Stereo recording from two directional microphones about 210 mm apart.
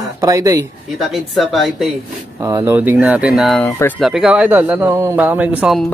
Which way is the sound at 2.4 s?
15° right (ahead or behind).